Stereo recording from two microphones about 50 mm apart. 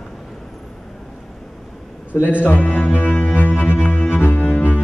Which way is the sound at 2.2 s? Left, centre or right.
Left.